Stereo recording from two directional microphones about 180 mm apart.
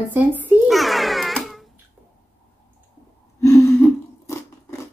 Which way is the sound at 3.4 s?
15° left (ahead or behind).